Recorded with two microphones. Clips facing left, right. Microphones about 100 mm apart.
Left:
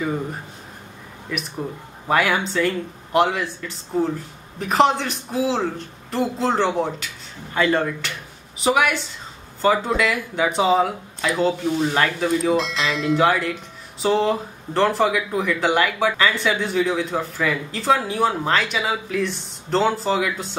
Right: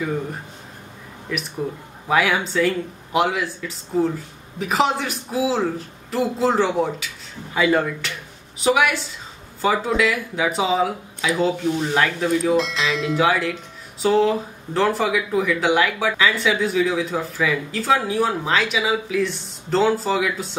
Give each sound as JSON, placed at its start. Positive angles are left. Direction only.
{"t": 2.0, "sound": "speech", "side_deg": 0}